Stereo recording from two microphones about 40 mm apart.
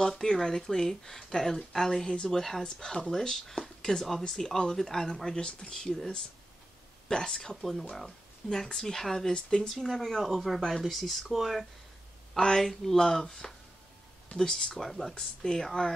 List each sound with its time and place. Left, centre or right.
0.0 s speech: centre
7.1 s speech: centre
9.8 s speech: centre
12.4 s speech: centre
15.1 s speech: centre